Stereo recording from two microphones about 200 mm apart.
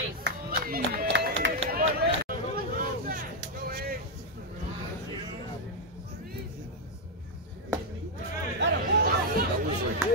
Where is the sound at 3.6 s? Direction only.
45° right (ahead or behind).